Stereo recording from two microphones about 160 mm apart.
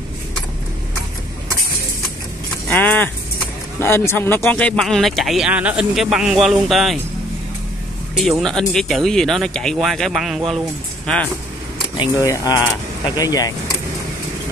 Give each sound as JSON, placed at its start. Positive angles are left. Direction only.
{"t": 2.7, "sound": "a sound", "side_deg": 10}
{"t": 3.8, "sound": "speech", "side_deg": 15}
{"t": 8.2, "sound": "speech", "side_deg": 0}
{"t": 12.0, "sound": "speech", "side_deg": 20}